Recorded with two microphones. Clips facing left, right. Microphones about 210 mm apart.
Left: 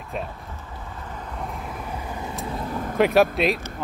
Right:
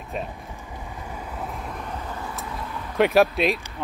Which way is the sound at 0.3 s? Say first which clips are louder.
Right 1 dB; 15° right (ahead or behind).